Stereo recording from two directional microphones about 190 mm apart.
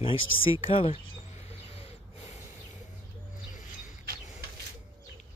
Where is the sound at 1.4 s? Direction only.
30° left (ahead or behind).